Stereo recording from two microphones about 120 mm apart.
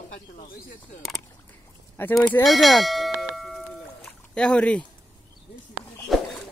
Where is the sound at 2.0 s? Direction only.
15° left (ahead or behind).